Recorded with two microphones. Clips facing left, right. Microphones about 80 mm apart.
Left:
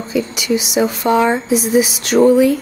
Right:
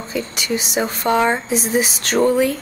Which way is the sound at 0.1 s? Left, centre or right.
Right.